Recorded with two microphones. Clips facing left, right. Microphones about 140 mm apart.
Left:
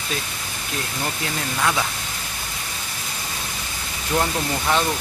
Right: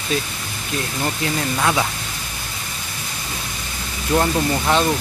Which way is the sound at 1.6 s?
15° right (ahead or behind).